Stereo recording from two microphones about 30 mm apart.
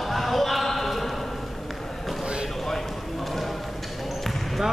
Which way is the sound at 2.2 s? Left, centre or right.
Right.